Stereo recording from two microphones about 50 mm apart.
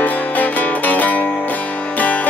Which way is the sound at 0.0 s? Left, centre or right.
Left.